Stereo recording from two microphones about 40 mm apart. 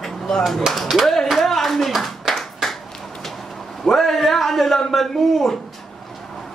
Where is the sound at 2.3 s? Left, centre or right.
Centre.